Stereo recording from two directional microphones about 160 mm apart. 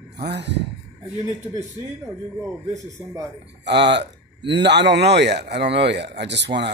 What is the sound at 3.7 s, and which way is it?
Speech, 90° right.